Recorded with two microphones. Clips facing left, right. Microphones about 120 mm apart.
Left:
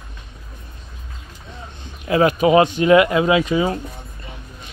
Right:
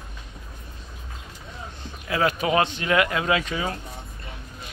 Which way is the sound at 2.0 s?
20° left (ahead or behind).